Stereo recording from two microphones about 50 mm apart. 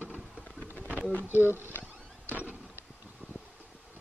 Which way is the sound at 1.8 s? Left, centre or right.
Right.